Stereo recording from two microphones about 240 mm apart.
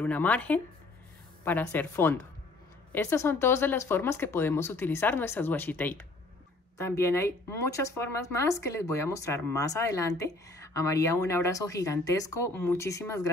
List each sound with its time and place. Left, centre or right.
0.0 s speech: centre